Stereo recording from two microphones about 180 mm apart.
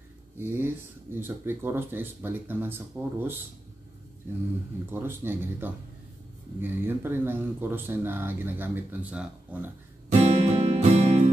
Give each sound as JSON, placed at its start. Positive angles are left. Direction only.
{"t": 0.4, "sound": "speech", "side_deg": -10}
{"t": 4.9, "sound": "speech", "side_deg": -10}
{"t": 10.0, "sound": "music", "side_deg": -35}